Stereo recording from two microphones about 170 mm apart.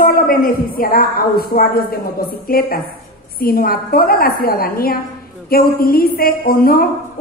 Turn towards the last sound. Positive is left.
turn(degrees=60)  # may be behind; listen again after turning